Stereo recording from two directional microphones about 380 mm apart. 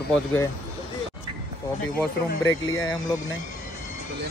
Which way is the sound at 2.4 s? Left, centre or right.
Centre.